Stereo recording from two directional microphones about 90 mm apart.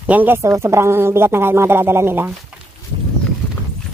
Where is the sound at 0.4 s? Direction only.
35° right (ahead or behind).